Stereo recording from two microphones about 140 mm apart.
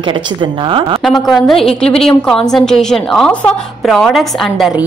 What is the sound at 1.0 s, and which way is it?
A woman's voice, centre (ahead or behind).